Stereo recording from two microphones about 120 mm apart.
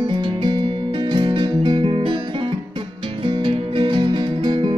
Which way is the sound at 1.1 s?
40° right (ahead or behind).